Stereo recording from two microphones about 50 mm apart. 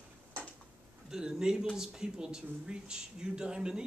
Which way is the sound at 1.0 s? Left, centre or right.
Centre.